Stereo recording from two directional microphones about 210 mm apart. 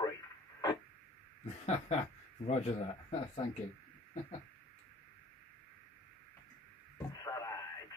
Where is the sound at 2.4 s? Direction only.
30° left (ahead or behind).